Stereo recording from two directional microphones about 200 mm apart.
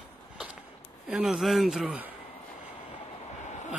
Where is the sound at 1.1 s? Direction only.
Centre (ahead or behind).